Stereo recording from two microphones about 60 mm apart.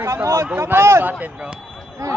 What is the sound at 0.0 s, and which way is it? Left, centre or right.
Speech, right.